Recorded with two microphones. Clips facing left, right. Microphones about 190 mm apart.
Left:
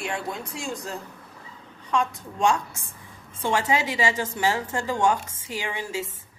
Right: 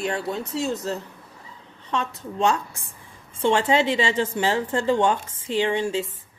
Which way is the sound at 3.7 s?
30° right (ahead or behind).